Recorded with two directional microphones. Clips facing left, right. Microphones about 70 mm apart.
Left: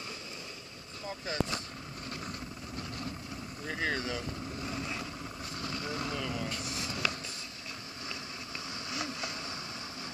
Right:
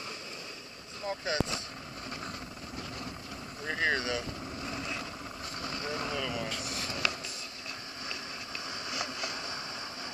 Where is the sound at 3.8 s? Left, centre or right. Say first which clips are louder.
Right 4 dB; centre.